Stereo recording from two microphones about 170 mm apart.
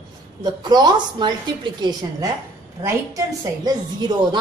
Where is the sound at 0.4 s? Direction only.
25° right (ahead or behind).